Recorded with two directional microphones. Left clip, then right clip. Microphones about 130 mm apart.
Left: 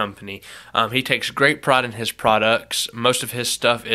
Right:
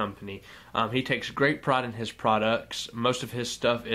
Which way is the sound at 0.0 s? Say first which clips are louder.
Left 7 dB; 20° left (ahead or behind).